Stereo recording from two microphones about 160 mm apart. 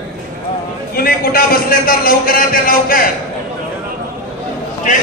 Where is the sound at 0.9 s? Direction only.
70° left (ahead or behind).